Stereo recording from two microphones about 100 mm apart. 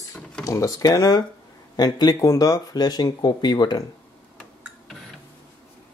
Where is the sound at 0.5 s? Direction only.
35° left (ahead or behind).